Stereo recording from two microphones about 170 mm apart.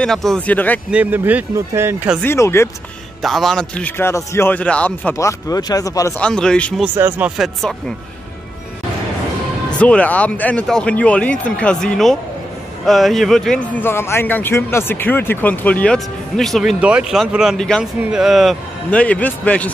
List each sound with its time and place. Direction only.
0.0 s speech: 5° left (ahead or behind)
0.9 s speech: 10° right (ahead or behind)
2.2 s speech: 15° left (ahead or behind)
3.2 s speech: centre (ahead or behind); by 6.2 s 20° left (ahead or behind)
6.2 s speech: 5° left (ahead or behind)
6.8 s speech: 10° right (ahead or behind)
9.8 s speech: 5° left (ahead or behind)